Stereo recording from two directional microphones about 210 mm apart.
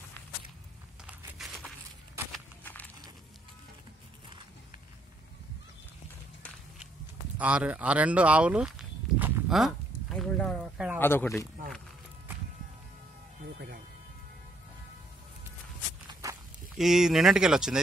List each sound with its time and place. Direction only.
1.0 s a sound: centre (ahead or behind)
7.3 s speech: 5° right (ahead or behind)
9.2 s a sound: centre (ahead or behind)
11.0 s speech: 10° left (ahead or behind)
13.4 s music: 50° right (ahead or behind)
16.1 s walk: 15° right (ahead or behind)
16.7 s speech: centre (ahead or behind)